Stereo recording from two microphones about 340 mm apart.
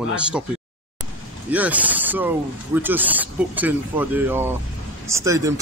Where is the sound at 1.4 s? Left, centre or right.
Centre.